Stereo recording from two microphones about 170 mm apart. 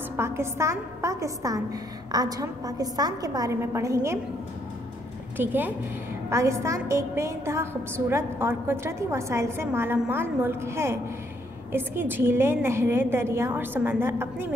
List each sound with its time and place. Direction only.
0.2 s a woman's voice: 15° right (ahead or behind)
5.4 s a woman's voice: 10° right (ahead or behind)